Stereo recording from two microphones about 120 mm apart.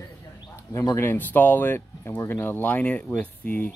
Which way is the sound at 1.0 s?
15° left (ahead or behind).